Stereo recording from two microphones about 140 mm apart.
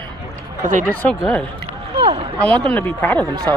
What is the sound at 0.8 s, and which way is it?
Speech, 10° left (ahead or behind).